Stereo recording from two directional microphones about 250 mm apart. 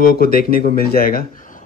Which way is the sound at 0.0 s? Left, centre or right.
Left.